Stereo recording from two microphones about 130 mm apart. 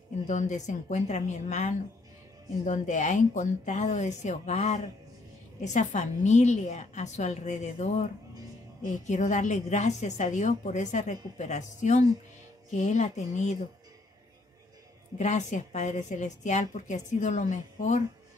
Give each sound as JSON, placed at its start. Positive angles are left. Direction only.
{"t": 0.3, "sound": "a woman's voice", "side_deg": 65}
{"t": 9.0, "sound": "a woman's voice", "side_deg": 70}
{"t": 15.1, "sound": "a woman's voice", "side_deg": 65}